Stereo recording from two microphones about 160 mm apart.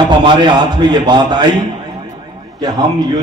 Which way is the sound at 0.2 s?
30° right (ahead or behind).